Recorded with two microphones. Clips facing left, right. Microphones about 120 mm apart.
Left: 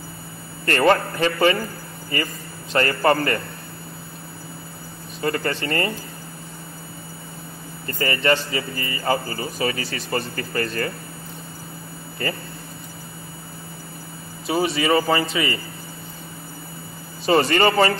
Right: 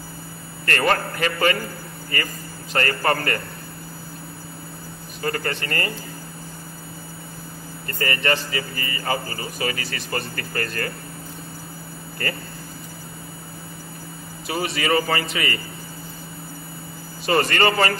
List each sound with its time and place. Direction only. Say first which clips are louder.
0.7 s a man's voice: left 4 dB; 30° left (ahead or behind)
2.8 s a man's voice: left 3 dB; 30° left (ahead or behind)
5.2 s a man's voice: left 3 dB; 25° left (ahead or behind)
7.8 s a man's voice: left 3 dB; 30° left (ahead or behind)
14.5 s a man's voice: left 3 dB; 25° left (ahead or behind)
17.3 s a man's voice: left 2 dB; 25° left (ahead or behind)